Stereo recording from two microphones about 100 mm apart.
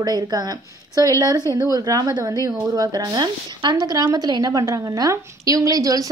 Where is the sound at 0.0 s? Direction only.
40° right (ahead or behind).